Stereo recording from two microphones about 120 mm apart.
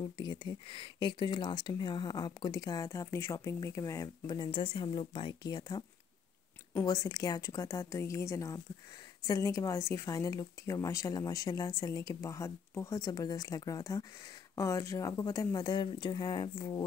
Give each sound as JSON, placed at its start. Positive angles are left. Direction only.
{"t": 0.2, "sound": "speech", "side_deg": 35}